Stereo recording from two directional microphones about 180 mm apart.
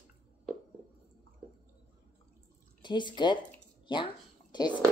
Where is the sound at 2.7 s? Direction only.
25° left (ahead or behind).